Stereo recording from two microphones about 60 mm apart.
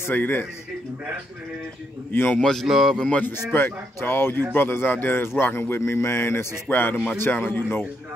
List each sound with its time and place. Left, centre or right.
0.1 s a man's voice: left
2.1 s a man's voice: left
2.4 s speech: centre
3.0 s a man's voice: left
3.5 s a man's voice: left
6.7 s a man's voice: left